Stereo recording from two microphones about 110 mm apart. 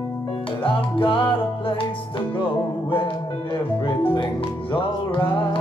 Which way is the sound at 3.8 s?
50° left (ahead or behind).